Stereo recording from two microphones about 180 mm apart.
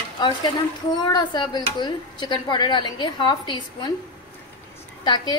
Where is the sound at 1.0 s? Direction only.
25° left (ahead or behind).